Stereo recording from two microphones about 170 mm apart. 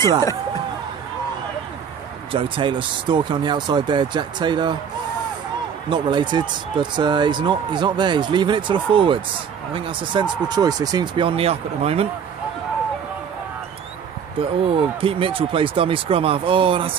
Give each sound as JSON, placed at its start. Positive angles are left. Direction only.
{"t": 2.3, "sound": "speech", "side_deg": -30}
{"t": 5.9, "sound": "speech", "side_deg": -25}
{"t": 14.4, "sound": "speech", "side_deg": -30}